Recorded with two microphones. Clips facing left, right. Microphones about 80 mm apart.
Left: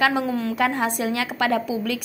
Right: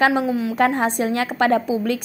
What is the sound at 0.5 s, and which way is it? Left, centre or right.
A woman's voice, right.